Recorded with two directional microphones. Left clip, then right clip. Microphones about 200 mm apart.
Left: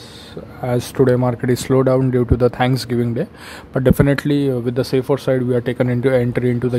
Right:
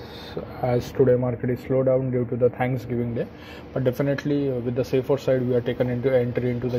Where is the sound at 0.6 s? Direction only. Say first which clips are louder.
Left 4 dB; 25° left (ahead or behind).